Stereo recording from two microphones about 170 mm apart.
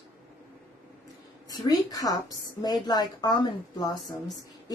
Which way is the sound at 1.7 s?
20° left (ahead or behind).